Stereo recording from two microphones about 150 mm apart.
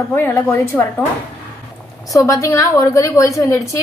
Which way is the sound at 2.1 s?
20° left (ahead or behind).